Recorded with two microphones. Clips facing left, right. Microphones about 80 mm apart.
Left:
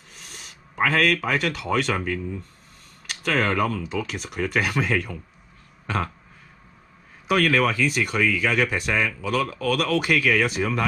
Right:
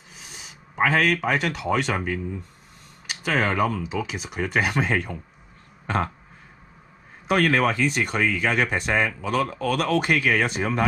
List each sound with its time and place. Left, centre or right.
0.1 s speech: centre
5.9 s burping: centre
7.2 s speech: centre
8.0 s speech: right
8.3 s speech: centre